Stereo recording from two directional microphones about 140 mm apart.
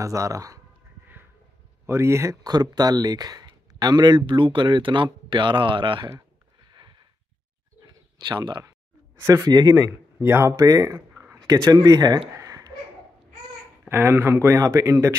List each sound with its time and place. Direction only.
0.0 s speech: 25° right (ahead or behind)
1.9 s speech: 20° right (ahead or behind); by 6.0 s 35° right (ahead or behind)
6.7 s a sound: 30° right (ahead or behind)
8.2 s speech: 30° right (ahead or behind)
9.1 s speech: 20° right (ahead or behind)
10.1 s speech: 15° right (ahead or behind)
12.4 s a sound: 25° right (ahead or behind)
13.8 s speech: 15° right (ahead or behind)